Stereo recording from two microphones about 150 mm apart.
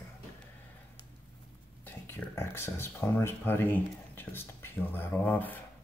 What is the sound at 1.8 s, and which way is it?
Speech, 15° left (ahead or behind).